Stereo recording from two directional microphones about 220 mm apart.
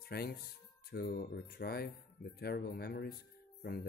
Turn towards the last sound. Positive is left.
turn(degrees=45)  # may be behind; listen again after turning